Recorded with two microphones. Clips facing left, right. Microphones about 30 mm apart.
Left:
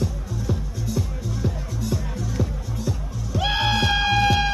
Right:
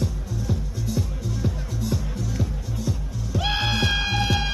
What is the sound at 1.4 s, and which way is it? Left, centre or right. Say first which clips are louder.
Music: left 1 dB; centre.